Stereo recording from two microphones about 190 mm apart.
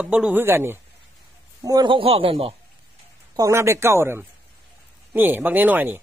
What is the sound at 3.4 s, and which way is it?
Speech, 15° right (ahead or behind).